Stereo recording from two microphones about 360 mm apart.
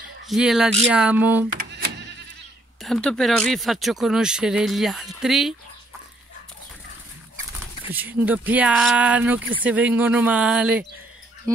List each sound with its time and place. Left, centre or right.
0.3 s speech: centre
1.6 s sheep: right
2.8 s speech: centre
7.9 s speech: centre